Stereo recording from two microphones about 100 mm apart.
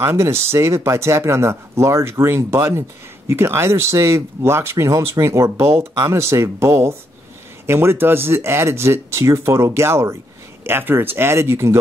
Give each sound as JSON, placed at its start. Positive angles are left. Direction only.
{"t": 0.0, "sound": "speech", "side_deg": -25}